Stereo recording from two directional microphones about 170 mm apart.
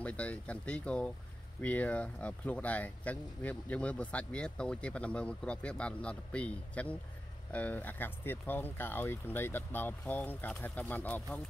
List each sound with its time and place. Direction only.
0.0 s speech: 10° left (ahead or behind)